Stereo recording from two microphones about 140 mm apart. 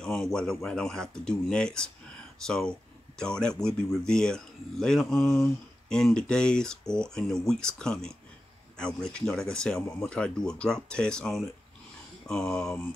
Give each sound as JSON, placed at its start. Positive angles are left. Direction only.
{"t": 0.0, "sound": "speech", "side_deg": 5}